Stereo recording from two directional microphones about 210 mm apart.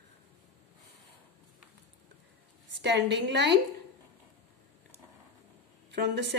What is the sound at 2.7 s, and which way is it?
Speech, 55° right (ahead or behind).